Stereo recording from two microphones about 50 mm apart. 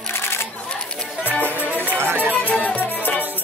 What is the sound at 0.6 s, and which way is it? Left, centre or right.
Speech, centre.